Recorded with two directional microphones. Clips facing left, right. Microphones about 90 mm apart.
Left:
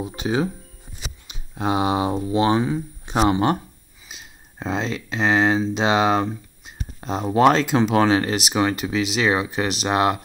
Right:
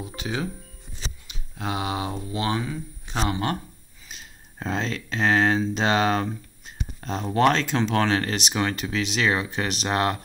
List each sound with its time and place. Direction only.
0.0 s speech: 25° left (ahead or behind)
4.1 s speech: 5° left (ahead or behind)